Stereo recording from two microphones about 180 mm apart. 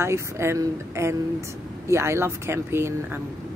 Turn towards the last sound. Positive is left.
turn(degrees=-15)  # may be behind; listen again after turning